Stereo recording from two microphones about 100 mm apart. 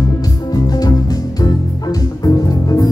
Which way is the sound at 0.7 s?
40° left (ahead or behind).